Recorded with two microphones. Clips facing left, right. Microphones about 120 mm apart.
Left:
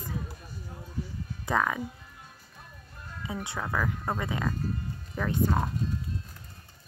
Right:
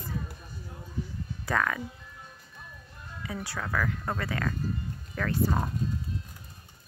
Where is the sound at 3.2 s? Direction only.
20° left (ahead or behind).